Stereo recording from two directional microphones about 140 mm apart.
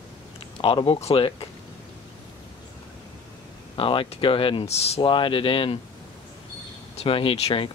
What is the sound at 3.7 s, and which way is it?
Speech, 35° left (ahead or behind).